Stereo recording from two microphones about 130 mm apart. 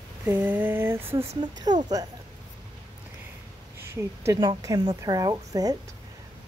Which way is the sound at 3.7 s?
20° right (ahead or behind).